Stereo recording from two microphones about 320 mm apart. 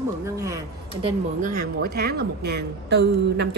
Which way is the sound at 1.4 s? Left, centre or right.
Right.